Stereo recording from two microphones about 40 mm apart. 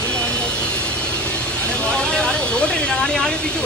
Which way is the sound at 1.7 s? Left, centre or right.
Left.